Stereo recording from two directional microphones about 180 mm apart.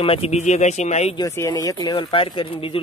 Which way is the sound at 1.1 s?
20° left (ahead or behind).